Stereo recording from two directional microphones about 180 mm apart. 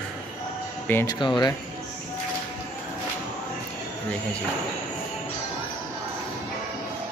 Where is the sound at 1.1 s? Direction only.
25° left (ahead or behind).